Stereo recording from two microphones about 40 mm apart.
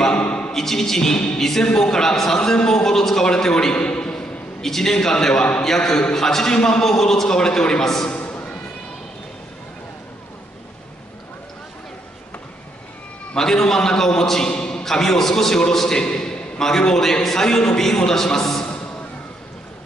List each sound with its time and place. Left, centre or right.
0.0 s a sound: left
0.5 s a man's voice: centre
13.4 s a man's voice: centre